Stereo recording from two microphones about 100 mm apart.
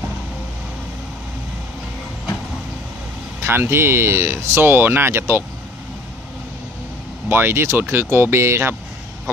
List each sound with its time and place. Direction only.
3.4 s speech: 25° right (ahead or behind)
7.2 s speech: 25° right (ahead or behind)